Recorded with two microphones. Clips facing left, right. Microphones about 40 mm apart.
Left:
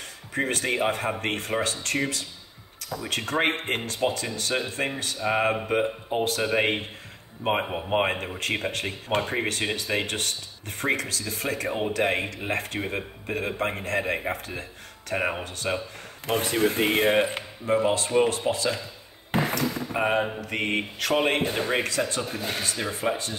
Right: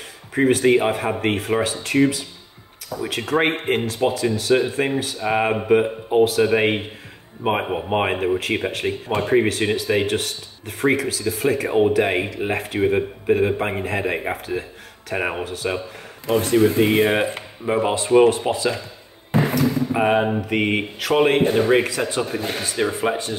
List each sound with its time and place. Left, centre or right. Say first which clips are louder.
0.3 s speech: right 10 dB; centre
16.6 s speech: right 3 dB; left
17.4 s speech: right 2 dB; centre
19.5 s basketball bounce: right 7 dB; centre
20.3 s speech: right 7 dB; centre